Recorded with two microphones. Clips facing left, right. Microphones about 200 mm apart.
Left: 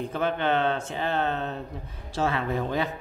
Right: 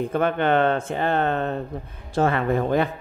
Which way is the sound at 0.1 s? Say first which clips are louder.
Right 4 dB; 55° right (ahead or behind).